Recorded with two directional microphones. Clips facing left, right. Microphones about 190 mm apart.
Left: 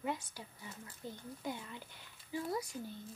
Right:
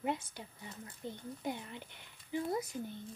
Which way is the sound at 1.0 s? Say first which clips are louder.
Right 3 dB; 20° right (ahead or behind).